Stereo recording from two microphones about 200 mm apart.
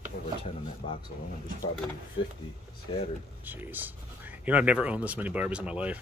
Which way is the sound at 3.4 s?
10° right (ahead or behind).